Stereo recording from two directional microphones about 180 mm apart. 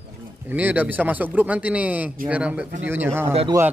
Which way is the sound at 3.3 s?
35° right (ahead or behind).